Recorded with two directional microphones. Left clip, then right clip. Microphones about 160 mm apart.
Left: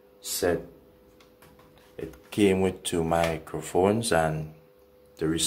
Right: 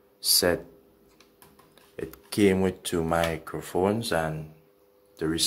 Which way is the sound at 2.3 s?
20° right (ahead or behind).